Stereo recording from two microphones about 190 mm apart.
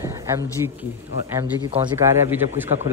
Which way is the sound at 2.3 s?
10° right (ahead or behind).